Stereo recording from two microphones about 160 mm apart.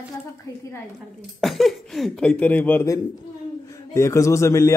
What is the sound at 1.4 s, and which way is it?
Speech, centre (ahead or behind).